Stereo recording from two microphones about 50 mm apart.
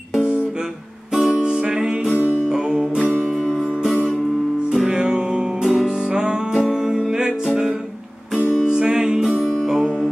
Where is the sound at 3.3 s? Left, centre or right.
Centre.